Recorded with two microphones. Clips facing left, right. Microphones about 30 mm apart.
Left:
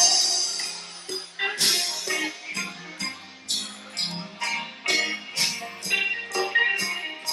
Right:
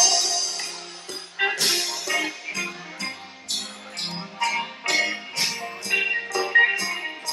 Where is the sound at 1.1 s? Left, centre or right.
Centre.